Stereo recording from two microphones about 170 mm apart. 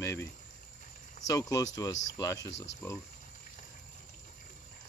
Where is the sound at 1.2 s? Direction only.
20° left (ahead or behind).